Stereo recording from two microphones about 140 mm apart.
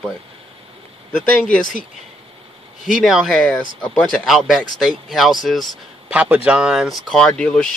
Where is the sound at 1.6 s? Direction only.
65° left (ahead or behind).